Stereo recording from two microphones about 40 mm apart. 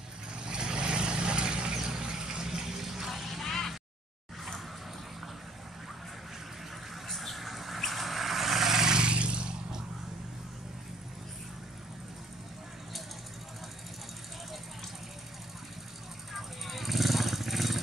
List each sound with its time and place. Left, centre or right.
0.4 s vehicle: right; by 3.4 s centre
3.4 s a sound: centre
7.1 s vehicle: centre
16.3 s vehicle: centre